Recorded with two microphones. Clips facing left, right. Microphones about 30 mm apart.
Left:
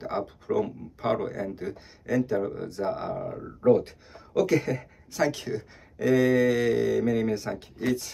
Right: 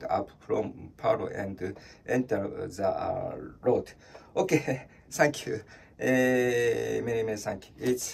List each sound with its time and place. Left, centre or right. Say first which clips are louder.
0.1 s speech: left 2 dB; centre
3.6 s speech: left 5 dB; left
5.9 s speech: left 3 dB; left